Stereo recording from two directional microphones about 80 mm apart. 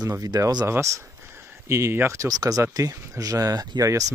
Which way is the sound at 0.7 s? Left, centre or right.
Right.